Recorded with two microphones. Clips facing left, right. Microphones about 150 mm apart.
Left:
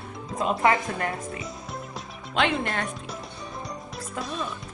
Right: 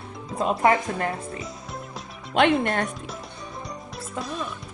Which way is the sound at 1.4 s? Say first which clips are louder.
Even; centre (ahead or behind).